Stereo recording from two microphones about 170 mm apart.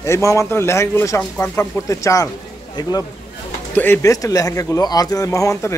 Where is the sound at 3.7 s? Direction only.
10° left (ahead or behind).